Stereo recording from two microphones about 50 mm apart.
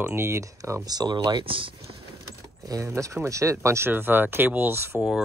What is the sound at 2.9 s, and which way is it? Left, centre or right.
Speech, right.